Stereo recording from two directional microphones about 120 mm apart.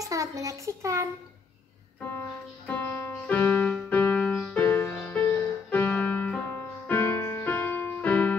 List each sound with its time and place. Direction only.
0.0 s a child's voice: 30° right (ahead or behind)
2.0 s music: 15° left (ahead or behind)
4.6 s music: 15° left (ahead or behind)
7.4 s keyboard: 15° left (ahead or behind)